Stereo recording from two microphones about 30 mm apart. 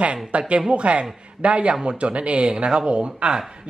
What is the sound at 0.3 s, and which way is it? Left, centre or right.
A man's voice, right.